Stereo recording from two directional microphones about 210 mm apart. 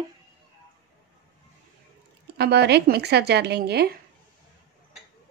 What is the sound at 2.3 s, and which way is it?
Speech, 50° right (ahead or behind).